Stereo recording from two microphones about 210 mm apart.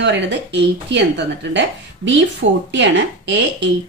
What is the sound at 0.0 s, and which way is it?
Speech, 55° right (ahead or behind).